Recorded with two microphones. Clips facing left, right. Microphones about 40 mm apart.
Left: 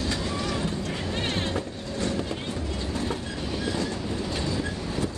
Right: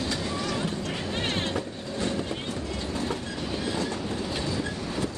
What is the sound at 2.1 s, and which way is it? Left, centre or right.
Train, right.